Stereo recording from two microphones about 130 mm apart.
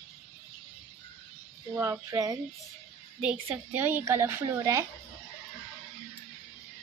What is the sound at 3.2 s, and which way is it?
A woman's voice, 10° right (ahead or behind).